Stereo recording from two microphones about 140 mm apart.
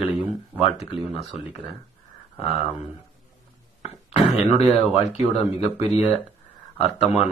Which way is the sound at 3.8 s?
50° left (ahead or behind).